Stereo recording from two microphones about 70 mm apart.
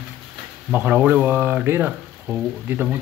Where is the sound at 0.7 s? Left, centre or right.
Right.